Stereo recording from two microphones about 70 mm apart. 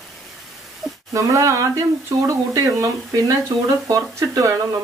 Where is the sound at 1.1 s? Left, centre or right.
Right.